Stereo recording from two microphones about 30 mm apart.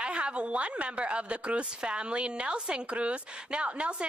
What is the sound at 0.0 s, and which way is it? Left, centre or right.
A woman's voice, right.